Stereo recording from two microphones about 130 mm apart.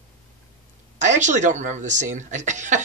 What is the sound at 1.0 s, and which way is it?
Speech, 70° right (ahead or behind).